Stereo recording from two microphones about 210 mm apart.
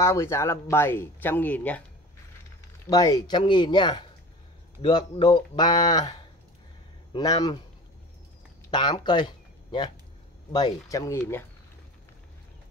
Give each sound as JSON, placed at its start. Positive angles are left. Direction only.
{"t": 0.0, "sound": "speech", "side_deg": 15}
{"t": 2.9, "sound": "speech", "side_deg": 15}
{"t": 8.6, "sound": "speech", "side_deg": 20}